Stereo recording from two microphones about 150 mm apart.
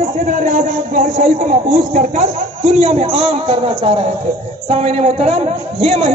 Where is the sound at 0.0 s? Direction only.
55° right (ahead or behind).